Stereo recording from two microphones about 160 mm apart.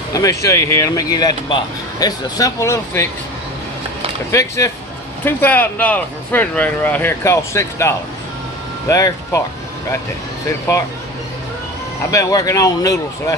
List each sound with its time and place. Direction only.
0.1 s speech: 20° left (ahead or behind)
4.3 s speech: 20° left (ahead or behind)
12.1 s speech: 20° left (ahead or behind)